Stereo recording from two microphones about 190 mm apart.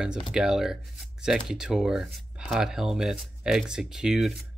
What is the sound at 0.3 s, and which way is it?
Speech, 5° right (ahead or behind).